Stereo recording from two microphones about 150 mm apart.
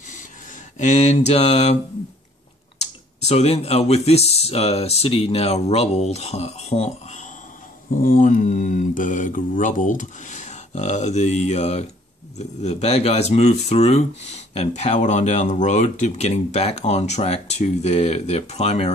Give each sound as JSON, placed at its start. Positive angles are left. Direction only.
{"t": 0.7, "sound": "speech", "side_deg": 50}
{"t": 2.8, "sound": "speech", "side_deg": 45}
{"t": 7.9, "sound": "speech", "side_deg": 65}